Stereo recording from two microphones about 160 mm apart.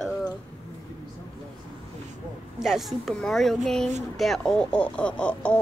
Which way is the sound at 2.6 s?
Centre (ahead or behind).